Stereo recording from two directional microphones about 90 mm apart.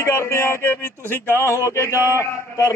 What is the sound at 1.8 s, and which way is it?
Speech, 35° left (ahead or behind).